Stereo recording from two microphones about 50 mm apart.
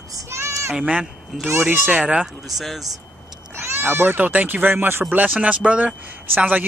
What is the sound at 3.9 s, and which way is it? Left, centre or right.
Speech, right.